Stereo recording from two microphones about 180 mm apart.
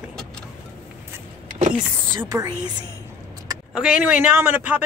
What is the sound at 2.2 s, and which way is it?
Speech, 20° right (ahead or behind).